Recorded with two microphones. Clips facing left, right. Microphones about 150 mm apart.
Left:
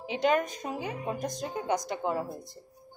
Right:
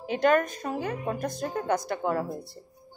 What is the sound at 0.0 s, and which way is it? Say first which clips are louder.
Speech: right 4 dB; 55° right (ahead or behind).